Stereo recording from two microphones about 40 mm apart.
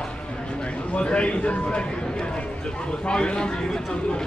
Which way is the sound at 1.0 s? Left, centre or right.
Left.